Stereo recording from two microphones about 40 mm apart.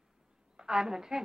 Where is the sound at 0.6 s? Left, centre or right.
Centre.